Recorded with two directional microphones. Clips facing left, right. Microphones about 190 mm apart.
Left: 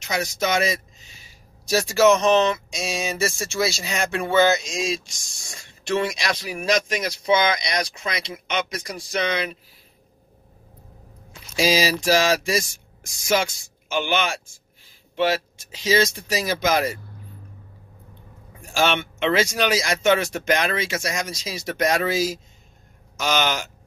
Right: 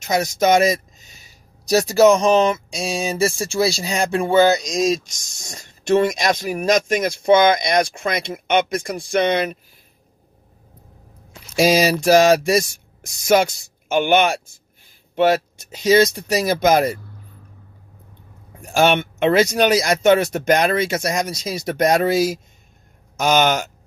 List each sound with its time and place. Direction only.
0.0 s a sound: 45° right (ahead or behind)
2.7 s speech: 35° right (ahead or behind); by 9.6 s 50° right (ahead or behind)
11.5 s speech: 55° right (ahead or behind)
18.6 s speech: 50° right (ahead or behind)
23.2 s speech: 50° right (ahead or behind)